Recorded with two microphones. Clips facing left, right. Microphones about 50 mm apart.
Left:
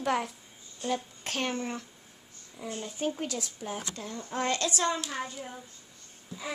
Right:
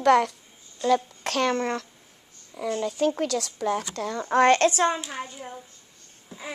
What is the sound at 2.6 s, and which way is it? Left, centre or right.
Speech, right.